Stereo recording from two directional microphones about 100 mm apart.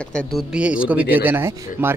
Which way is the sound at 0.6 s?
10° right (ahead or behind).